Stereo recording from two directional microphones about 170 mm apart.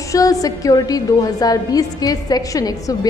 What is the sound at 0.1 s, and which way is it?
A woman's voice, 20° left (ahead or behind).